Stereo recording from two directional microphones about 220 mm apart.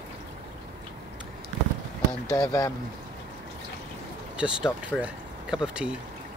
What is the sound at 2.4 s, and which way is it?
Speech, 15° left (ahead or behind).